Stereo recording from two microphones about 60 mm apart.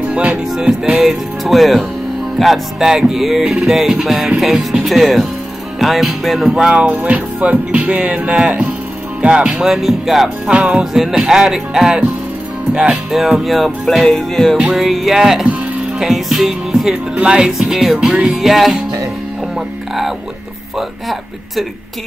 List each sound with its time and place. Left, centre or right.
0.1 s music: right
0.6 s speech: centre
6.7 s music: right
9.2 s speech: centre
10.5 s speech: centre
10.9 s speech: centre
12.7 s music: centre
13.1 s speech: centre
16.9 s speech: centre
17.6 s speech: centre
20.7 s speech: centre